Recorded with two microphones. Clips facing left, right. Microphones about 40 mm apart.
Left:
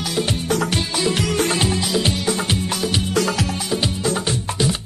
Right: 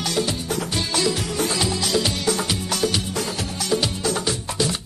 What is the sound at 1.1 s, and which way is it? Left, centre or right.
Music, left.